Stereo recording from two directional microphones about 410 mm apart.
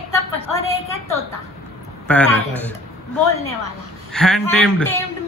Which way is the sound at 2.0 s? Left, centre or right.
Centre.